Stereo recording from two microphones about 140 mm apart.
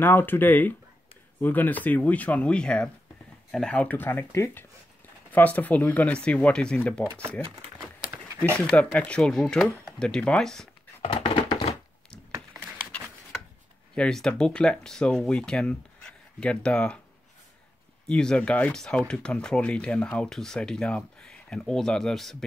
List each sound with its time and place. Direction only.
0.0 s speech: 15° left (ahead or behind)
8.5 s speech: 5° left (ahead or behind)
11.0 s a sound: 45° left (ahead or behind)
13.9 s speech: 5° left (ahead or behind)
18.0 s speech: 5° left (ahead or behind)